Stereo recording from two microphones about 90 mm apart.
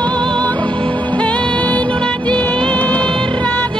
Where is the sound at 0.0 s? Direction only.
10° left (ahead or behind).